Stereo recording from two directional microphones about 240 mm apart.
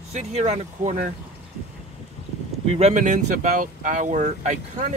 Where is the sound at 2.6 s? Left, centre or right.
Right.